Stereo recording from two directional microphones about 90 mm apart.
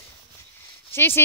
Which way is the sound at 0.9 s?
25° left (ahead or behind).